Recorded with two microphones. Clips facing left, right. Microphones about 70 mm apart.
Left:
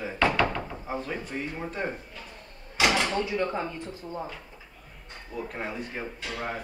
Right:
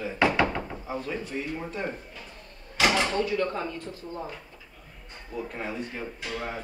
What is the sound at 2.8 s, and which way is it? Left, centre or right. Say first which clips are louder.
Speech: right 1 dB; centre.